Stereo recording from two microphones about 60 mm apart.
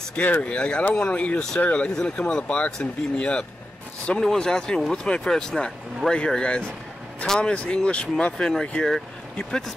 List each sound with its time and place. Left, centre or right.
0.1 s speech: left